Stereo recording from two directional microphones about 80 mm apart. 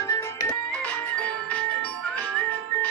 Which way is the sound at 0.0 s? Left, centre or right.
Left.